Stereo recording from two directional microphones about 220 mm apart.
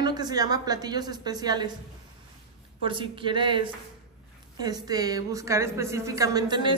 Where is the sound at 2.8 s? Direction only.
20° right (ahead or behind).